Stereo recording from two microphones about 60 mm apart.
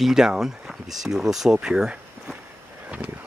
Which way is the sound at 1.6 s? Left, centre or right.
Centre.